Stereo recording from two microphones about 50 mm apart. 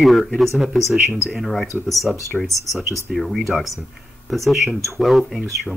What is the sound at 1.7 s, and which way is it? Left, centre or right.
Speech, left.